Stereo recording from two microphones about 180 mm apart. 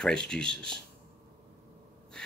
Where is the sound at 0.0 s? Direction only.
5° left (ahead or behind).